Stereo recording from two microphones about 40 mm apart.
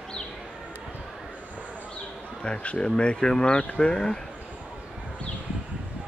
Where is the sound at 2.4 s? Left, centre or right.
Left.